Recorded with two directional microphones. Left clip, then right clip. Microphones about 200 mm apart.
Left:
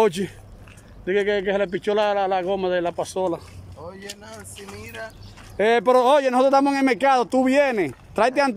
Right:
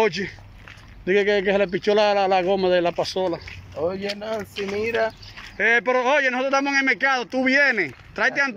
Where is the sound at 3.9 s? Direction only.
40° right (ahead or behind).